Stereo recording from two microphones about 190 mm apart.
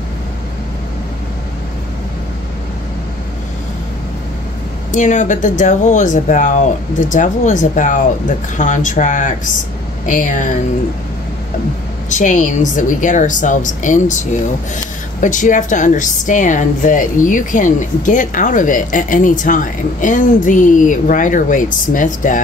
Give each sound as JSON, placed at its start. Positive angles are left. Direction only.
{"t": 4.9, "sound": "a woman's voice", "side_deg": 40}
{"t": 12.1, "sound": "a woman's voice", "side_deg": 40}